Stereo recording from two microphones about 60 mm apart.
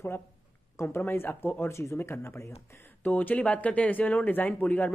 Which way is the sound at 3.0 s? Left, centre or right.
Left.